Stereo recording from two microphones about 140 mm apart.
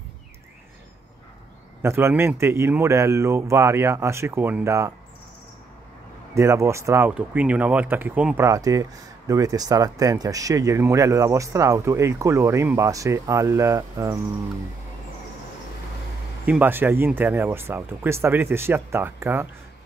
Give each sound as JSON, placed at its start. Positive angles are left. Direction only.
{"t": 1.8, "sound": "speech", "side_deg": -20}
{"t": 6.3, "sound": "speech", "side_deg": -20}
{"t": 7.1, "sound": "speech", "side_deg": -10}
{"t": 8.5, "sound": "speech", "side_deg": -25}
{"t": 16.4, "sound": "speech", "side_deg": -10}